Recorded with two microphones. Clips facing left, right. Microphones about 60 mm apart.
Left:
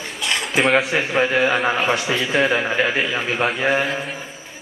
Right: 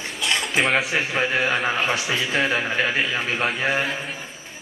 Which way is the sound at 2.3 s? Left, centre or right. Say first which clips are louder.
Left 5 dB; centre.